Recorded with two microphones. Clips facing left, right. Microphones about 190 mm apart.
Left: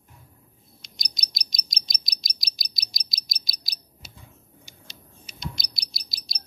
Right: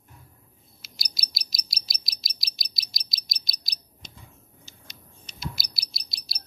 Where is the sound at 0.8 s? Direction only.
5° right (ahead or behind).